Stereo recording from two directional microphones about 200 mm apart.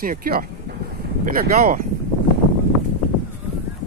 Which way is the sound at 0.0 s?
45° right (ahead or behind).